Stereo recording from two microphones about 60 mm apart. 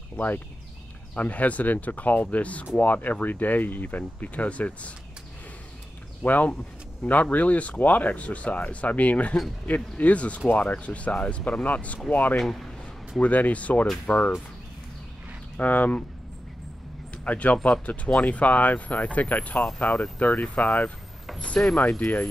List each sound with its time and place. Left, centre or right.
0.1 s speech: left
6.2 s speech: left
12.4 s speech: centre
13.2 s speech: left
15.6 s speech: left
17.2 s speech: left
21.4 s speech: centre